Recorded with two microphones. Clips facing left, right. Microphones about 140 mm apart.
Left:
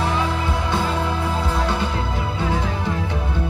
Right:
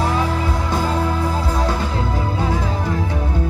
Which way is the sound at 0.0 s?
40° right (ahead or behind).